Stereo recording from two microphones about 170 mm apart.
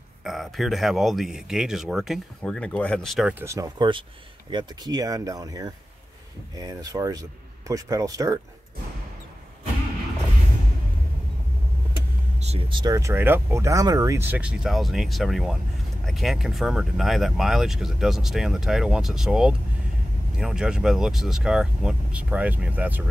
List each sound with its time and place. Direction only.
0.2 s speech: centre (ahead or behind)
3.3 s speech: 20° right (ahead or behind)
12.4 s speech: 35° right (ahead or behind); by 23.0 s 10° right (ahead or behind)